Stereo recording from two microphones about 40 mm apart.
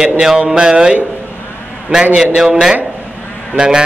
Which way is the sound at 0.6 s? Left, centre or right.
Centre.